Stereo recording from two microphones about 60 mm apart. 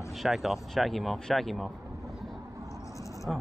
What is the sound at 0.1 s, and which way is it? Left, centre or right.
Speech, centre.